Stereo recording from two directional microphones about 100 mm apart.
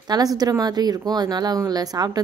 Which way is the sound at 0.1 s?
40° right (ahead or behind).